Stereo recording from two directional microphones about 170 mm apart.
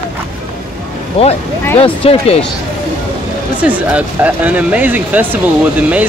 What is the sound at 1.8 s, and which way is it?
Speech, 35° left (ahead or behind).